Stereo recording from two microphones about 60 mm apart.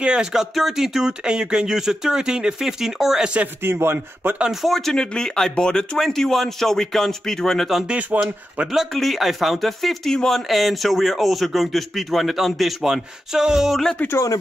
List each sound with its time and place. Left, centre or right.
0.0 s speech: centre
3.6 s speech: right
4.5 s speech: centre
7.8 s speech: centre
8.9 s a man's voice: centre